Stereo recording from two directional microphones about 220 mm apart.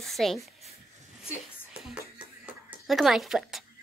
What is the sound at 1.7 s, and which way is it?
Music, 5° right (ahead or behind).